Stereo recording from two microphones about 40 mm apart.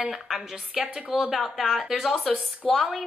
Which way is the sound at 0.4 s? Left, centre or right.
Centre.